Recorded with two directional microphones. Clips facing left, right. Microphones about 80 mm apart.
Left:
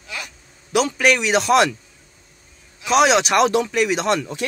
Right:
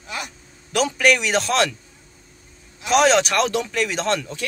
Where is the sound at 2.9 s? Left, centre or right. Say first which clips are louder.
Left 1 dB; centre.